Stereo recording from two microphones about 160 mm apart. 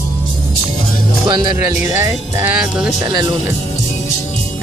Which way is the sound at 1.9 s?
15° right (ahead or behind).